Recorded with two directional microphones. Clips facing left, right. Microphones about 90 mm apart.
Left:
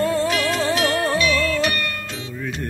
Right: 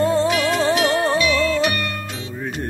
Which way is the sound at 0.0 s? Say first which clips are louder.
Right 2 dB; 25° right (ahead or behind).